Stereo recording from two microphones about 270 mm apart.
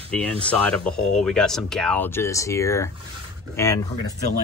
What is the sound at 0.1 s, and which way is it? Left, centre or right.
Speech, centre.